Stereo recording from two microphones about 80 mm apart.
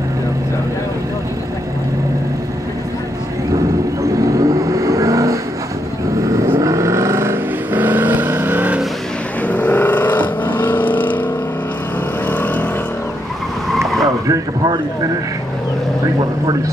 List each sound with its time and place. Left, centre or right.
4.1 s vehicle: right
6.5 s vehicle: right
7.7 s vehicle: right
9.5 s vehicle: left
12.3 s vehicle: left
13.7 s vehicle: centre